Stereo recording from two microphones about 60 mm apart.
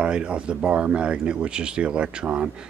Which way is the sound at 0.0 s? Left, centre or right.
Centre.